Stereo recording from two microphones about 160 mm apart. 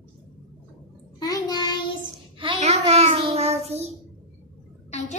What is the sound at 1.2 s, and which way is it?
Child singing, 25° left (ahead or behind).